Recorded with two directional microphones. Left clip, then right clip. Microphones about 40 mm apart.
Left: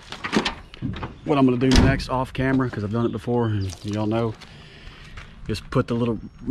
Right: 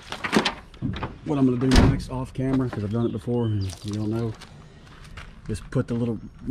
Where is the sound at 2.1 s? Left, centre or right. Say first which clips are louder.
Left 5 dB; right.